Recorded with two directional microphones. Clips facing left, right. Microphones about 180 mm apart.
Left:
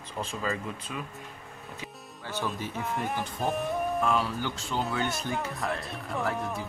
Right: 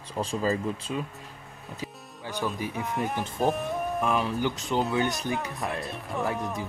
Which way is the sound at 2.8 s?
Centre (ahead or behind).